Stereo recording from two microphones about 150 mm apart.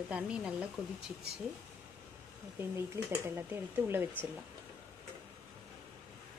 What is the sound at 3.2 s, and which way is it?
Speech, 15° right (ahead or behind).